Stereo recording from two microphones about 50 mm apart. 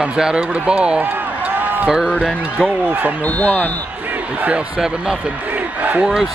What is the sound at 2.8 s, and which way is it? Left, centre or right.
Speech, right.